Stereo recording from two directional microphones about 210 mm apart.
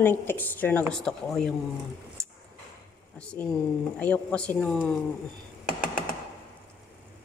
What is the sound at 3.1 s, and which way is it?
Speech, 5° left (ahead or behind).